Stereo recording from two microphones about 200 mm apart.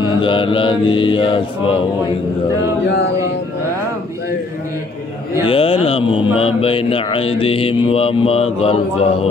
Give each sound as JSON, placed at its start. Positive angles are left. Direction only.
{"t": 0.0, "sound": "mantra", "side_deg": 25}
{"t": 5.5, "sound": "mantra", "side_deg": 25}